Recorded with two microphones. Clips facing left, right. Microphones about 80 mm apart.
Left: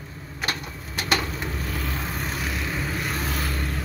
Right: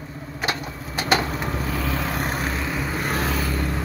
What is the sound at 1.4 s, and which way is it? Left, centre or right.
Vehicle, right.